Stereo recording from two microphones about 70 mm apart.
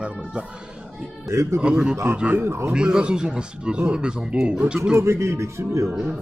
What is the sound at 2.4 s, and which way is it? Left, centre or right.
Speech, right.